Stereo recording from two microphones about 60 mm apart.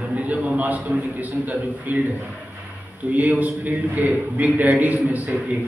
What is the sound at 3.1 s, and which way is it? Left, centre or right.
A man's voice, right.